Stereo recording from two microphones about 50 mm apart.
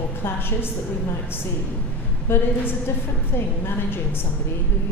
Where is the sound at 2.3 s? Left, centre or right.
Left.